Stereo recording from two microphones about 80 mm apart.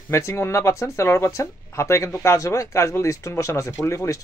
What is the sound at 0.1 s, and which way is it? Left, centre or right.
Speech, left.